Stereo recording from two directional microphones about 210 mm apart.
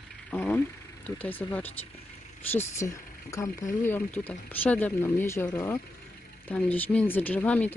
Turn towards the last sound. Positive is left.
turn(degrees=5)  # may be behind; listen again after turning